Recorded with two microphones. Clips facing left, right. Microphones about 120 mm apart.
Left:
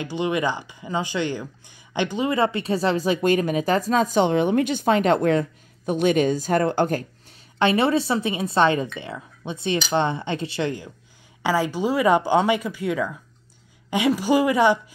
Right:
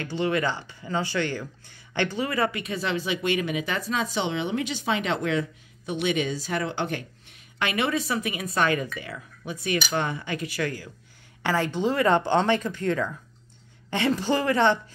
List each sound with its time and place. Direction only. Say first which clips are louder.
0.0 s speech: left 2 dB; 15° left (ahead or behind)
11.4 s speech: left 3 dB; 10° left (ahead or behind)